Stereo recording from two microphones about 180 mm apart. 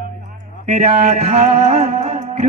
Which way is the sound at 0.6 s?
40° right (ahead or behind).